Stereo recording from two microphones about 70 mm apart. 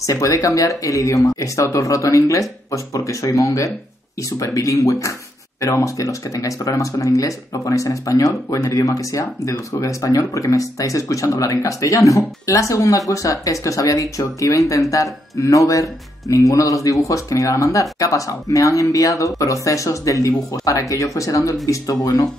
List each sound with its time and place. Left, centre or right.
0.0 s speech: left
22.0 s speech: left